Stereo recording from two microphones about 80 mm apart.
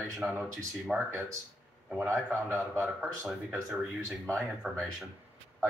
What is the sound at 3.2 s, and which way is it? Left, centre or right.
Speech, centre.